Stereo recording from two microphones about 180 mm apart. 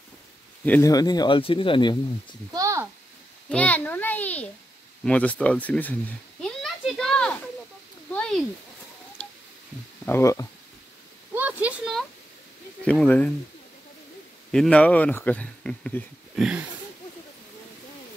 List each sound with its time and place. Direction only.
0.7 s speech: 15° left (ahead or behind)
2.5 s a sound: 20° right (ahead or behind)
3.4 s speech: 10° left (ahead or behind)
5.0 s a sound: 10° left (ahead or behind)
8.1 s speech: 5° left (ahead or behind)
9.2 s telephone dialing: 5° left (ahead or behind)
10.0 s speech: 15° left (ahead or behind)
11.3 s a sound: 10° right (ahead or behind)
12.8 s speech: 5° left (ahead or behind)
14.5 s speech: 5° left (ahead or behind)